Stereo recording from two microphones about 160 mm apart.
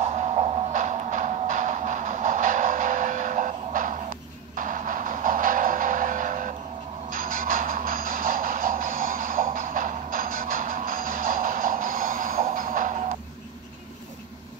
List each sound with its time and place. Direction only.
0.0 s music: 45° right (ahead or behind)